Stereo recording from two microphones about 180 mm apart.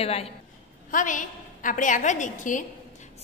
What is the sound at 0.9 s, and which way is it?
A woman's voice, 45° left (ahead or behind).